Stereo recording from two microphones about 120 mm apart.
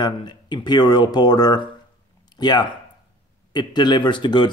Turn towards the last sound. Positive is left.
turn(degrees=40)  # may be behind; listen again after turning